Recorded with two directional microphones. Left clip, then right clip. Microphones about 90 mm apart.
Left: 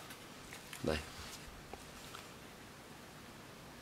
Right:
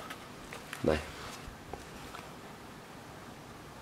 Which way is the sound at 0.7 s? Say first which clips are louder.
Right 8 dB; 5° left (ahead or behind).